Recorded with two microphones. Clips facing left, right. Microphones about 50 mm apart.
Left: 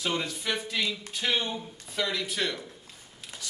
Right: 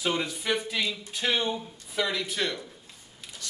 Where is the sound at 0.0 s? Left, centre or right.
Centre.